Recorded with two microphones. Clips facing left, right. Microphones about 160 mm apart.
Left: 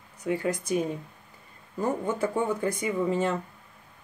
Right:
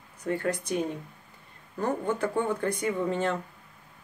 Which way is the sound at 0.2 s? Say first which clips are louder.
Left 2 dB; 5° left (ahead or behind).